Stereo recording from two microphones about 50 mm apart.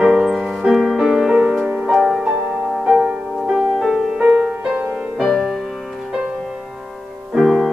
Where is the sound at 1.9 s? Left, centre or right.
Centre.